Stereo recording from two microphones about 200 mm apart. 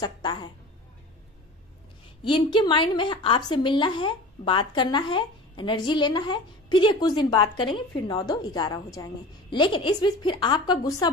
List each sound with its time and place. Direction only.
0.0 s a woman's voice: 20° left (ahead or behind)
2.2 s a woman's voice: 25° left (ahead or behind)